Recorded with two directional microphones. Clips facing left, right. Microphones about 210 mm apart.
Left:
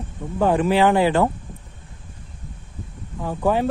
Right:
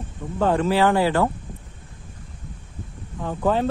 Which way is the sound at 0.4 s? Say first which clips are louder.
Left 2 dB; 15° left (ahead or behind).